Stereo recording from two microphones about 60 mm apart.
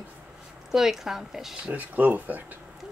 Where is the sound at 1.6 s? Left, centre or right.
Right.